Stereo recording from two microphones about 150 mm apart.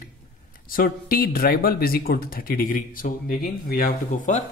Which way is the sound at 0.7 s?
70° left (ahead or behind).